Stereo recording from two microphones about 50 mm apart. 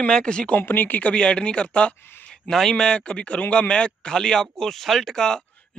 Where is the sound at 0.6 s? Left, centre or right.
Left.